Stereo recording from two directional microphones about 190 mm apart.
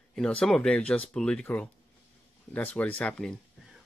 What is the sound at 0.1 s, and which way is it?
Speech, 5° left (ahead or behind).